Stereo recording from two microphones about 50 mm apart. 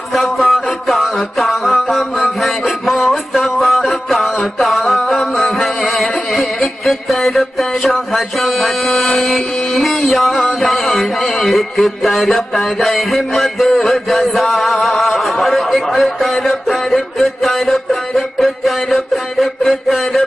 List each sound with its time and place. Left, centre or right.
0.1 s music: centre
4.4 s a sound: centre
13.7 s chant: centre